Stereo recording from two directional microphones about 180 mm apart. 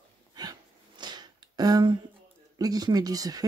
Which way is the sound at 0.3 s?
20° right (ahead or behind).